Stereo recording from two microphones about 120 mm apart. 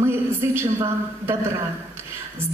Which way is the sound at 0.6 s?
20° right (ahead or behind).